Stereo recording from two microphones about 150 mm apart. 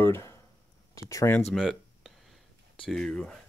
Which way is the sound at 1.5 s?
Centre (ahead or behind).